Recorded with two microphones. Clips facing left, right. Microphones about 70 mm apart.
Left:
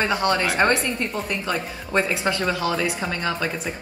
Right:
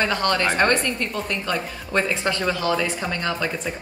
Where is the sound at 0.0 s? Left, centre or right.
Centre.